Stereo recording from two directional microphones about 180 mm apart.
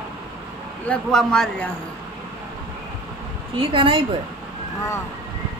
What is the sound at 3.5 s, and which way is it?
Speech, 30° right (ahead or behind).